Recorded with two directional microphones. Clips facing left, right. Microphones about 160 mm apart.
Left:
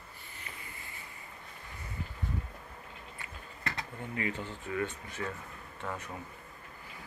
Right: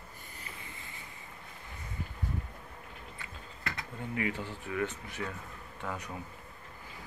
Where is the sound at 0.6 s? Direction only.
20° right (ahead or behind).